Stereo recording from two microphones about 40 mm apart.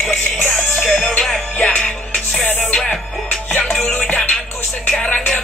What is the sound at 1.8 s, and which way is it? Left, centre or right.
Music, centre.